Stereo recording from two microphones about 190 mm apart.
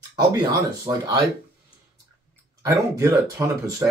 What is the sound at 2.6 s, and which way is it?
Speech, 15° right (ahead or behind).